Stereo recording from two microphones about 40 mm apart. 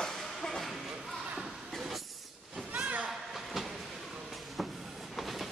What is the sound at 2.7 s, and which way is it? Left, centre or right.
Slam, right.